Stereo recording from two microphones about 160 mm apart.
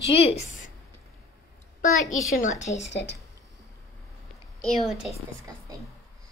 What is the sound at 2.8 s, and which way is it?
Speech, 90° left.